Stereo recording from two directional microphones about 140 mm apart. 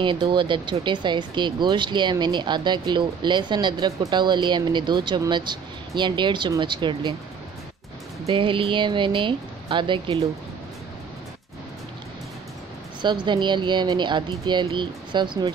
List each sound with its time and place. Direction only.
0.0 s speech: 35° right (ahead or behind)
8.3 s speech: 40° right (ahead or behind)
13.0 s speech: 35° right (ahead or behind)